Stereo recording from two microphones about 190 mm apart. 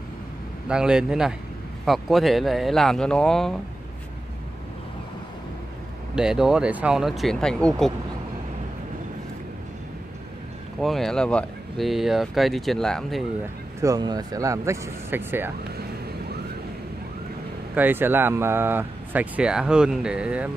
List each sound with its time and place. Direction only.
0.7 s speech: 5° right (ahead or behind)
6.1 s speech: 5° right (ahead or behind)
10.8 s speech: centre (ahead or behind)
13.7 s speech: 20° right (ahead or behind)
17.7 s speech: 10° right (ahead or behind)